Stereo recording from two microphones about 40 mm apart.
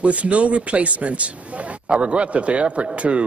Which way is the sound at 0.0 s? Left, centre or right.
Right.